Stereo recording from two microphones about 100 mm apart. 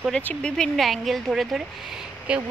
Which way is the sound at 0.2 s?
10° left (ahead or behind).